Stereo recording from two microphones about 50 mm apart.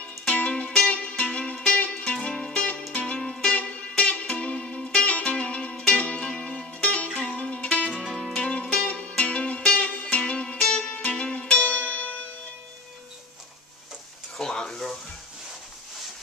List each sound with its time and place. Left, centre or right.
0.2 s music: left
8.1 s music: centre
8.4 s music: left
14.3 s a sound: centre